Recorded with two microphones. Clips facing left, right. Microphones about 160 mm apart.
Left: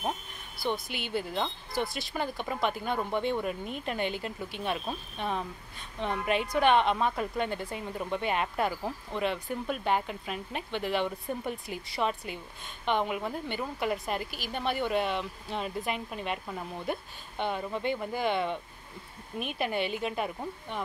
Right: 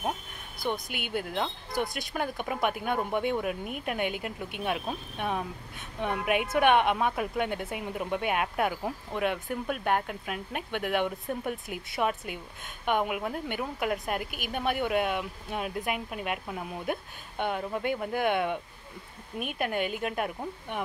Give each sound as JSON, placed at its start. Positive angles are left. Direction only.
{"t": 0.6, "sound": "speech", "side_deg": -20}
{"t": 1.2, "sound": "a woman's voice", "side_deg": 0}
{"t": 1.7, "sound": "speech", "side_deg": -15}
{"t": 10.7, "sound": "speech", "side_deg": -55}
{"t": 11.0, "sound": "a woman's voice", "side_deg": -5}
{"t": 18.1, "sound": "speech", "side_deg": -55}
{"t": 19.3, "sound": "a woman's voice", "side_deg": -5}